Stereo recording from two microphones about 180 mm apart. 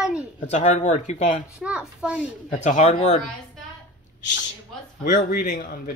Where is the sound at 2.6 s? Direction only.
40° left (ahead or behind).